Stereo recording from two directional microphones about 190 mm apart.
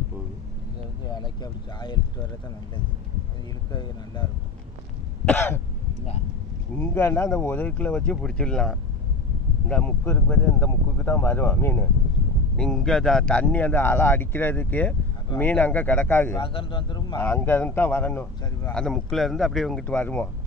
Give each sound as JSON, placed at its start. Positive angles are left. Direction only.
{"t": 1.0, "sound": "speech", "side_deg": 20}
{"t": 3.7, "sound": "speech", "side_deg": 20}
{"t": 5.2, "sound": "speech", "side_deg": 10}
{"t": 6.8, "sound": "speech", "side_deg": 15}
{"t": 16.3, "sound": "speech", "side_deg": 25}
{"t": 17.2, "sound": "speech", "side_deg": 10}